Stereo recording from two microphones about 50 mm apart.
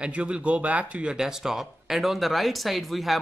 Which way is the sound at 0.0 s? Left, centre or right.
Right.